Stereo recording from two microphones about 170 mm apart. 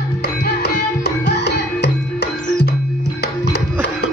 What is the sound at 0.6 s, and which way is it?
Music, 85° left.